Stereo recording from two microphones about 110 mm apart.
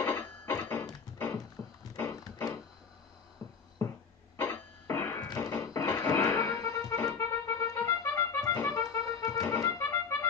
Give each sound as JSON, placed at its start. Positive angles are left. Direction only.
{"t": 0.0, "sound": "wood", "side_deg": 20}
{"t": 1.1, "sound": "a sound", "side_deg": 20}
{"t": 2.0, "sound": "pig", "side_deg": 30}
{"t": 3.4, "sound": "music", "side_deg": 30}